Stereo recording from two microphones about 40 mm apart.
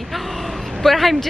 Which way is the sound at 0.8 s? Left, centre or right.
Centre.